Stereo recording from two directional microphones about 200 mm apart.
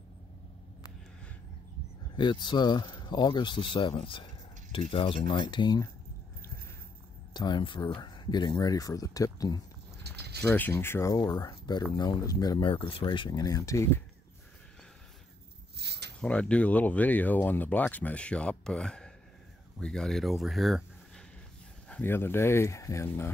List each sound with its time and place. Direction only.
2.1 s speech: 20° left (ahead or behind)
7.3 s speech: 20° left (ahead or behind)
10.0 s pulleys: 55° right (ahead or behind)
10.5 s speech: 10° left (ahead or behind)
15.7 s a sound: 55° right (ahead or behind)
16.2 s speech: 5° left (ahead or behind)
21.8 s speech: 10° left (ahead or behind)